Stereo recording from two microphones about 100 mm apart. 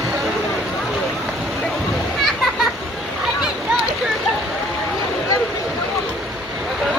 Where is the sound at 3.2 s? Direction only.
5° right (ahead or behind).